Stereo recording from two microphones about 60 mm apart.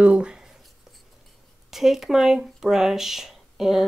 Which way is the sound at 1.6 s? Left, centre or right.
Centre.